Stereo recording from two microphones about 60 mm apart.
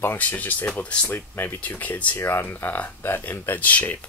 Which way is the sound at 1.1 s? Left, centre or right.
Left.